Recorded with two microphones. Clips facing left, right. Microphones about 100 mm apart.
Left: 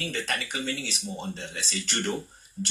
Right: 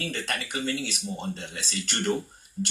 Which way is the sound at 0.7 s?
35° left (ahead or behind).